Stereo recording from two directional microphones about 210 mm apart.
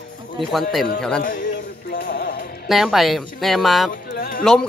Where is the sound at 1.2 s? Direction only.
40° left (ahead or behind).